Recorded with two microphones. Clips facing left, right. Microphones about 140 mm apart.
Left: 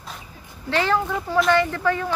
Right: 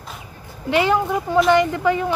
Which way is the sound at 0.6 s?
15° right (ahead or behind).